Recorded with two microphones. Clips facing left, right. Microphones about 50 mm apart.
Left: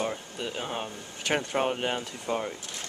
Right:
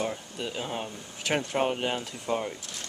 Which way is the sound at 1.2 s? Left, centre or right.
Centre.